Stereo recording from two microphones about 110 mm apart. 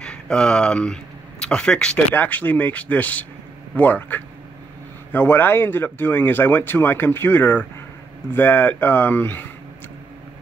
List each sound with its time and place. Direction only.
0.0 s speech: 10° left (ahead or behind)